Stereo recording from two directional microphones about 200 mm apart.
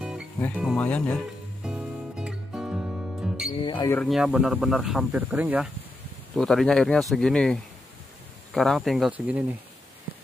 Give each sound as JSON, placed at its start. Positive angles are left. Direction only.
{"t": 0.7, "sound": "speech", "side_deg": 10}
{"t": 1.6, "sound": "music", "side_deg": -5}
{"t": 3.5, "sound": "speech", "side_deg": 20}
{"t": 3.9, "sound": "speech", "side_deg": 0}
{"t": 8.5, "sound": "speech", "side_deg": 0}